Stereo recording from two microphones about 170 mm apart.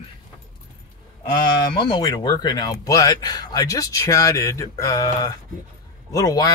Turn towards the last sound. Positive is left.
turn(degrees=20)  # may be behind; listen again after turning